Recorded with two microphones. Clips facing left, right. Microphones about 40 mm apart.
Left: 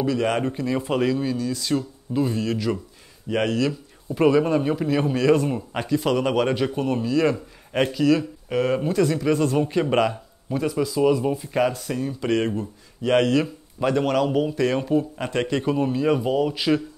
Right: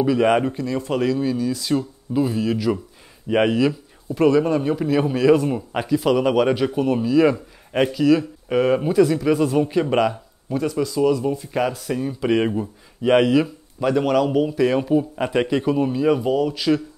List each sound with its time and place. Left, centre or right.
0.0 s speech: centre
0.5 s a man's voice: centre
3.3 s speech: centre
4.1 s a man's voice: centre